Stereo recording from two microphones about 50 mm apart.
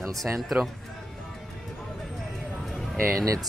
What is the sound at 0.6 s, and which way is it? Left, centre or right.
Speech, right.